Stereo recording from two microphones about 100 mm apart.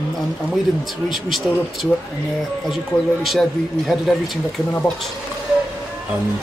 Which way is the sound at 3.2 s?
Centre (ahead or behind).